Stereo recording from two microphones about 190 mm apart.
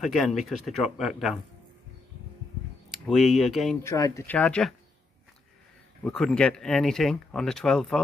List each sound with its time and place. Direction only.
0.0 s speech: centre (ahead or behind)
2.9 s speech: centre (ahead or behind)
3.8 s speech: 15° left (ahead or behind)
6.0 s speech: 5° left (ahead or behind)